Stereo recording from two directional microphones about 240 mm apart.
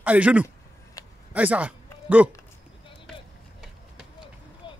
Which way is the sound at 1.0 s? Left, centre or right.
Centre.